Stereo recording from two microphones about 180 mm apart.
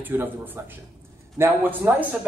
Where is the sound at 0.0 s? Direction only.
10° right (ahead or behind).